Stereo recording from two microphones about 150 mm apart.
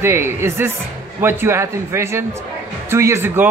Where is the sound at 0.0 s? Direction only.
15° right (ahead or behind).